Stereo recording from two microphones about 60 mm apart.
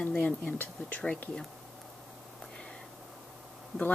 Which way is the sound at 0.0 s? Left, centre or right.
Left.